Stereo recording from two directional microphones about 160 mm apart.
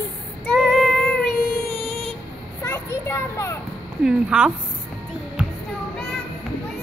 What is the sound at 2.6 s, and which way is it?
Children playing, 20° left (ahead or behind).